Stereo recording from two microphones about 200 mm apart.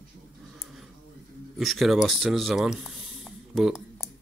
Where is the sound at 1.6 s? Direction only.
Centre (ahead or behind).